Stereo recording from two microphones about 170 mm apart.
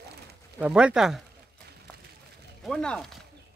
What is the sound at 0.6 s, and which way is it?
Speech, 5° right (ahead or behind).